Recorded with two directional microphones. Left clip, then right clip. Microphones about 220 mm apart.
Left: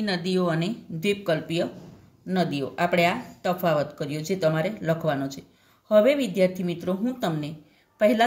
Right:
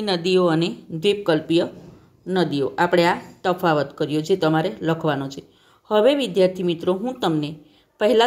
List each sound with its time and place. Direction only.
0.0 s speech: 25° right (ahead or behind)